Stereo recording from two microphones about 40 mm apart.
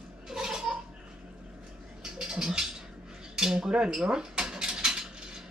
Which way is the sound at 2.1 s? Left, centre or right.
Centre.